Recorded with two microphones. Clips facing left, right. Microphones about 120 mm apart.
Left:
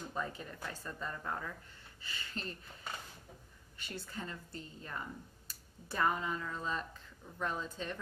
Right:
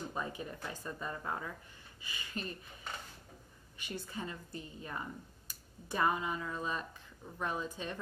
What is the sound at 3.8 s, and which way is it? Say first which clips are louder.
A woman's voice: right 2 dB; 15° right (ahead or behind).